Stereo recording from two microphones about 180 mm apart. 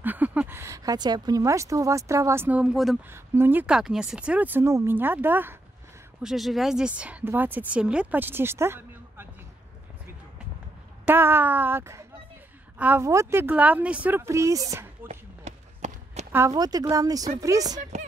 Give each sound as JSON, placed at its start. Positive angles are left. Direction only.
{"t": 0.0, "sound": "speech", "side_deg": -10}
{"t": 3.1, "sound": "speech", "side_deg": -10}
{"t": 6.2, "sound": "speech", "side_deg": 0}
{"t": 11.1, "sound": "speech", "side_deg": -10}
{"t": 15.0, "sound": "run", "side_deg": -40}
{"t": 16.3, "sound": "speech", "side_deg": -15}